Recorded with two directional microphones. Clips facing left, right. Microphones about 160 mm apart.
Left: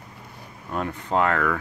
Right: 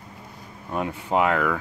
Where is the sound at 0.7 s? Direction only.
15° right (ahead or behind).